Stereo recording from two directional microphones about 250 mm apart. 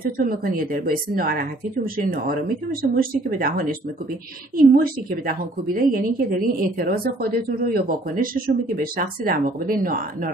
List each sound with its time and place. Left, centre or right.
0.0 s a woman's voice: right